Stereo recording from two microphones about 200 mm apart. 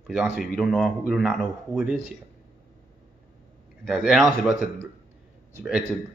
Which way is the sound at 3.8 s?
5° right (ahead or behind).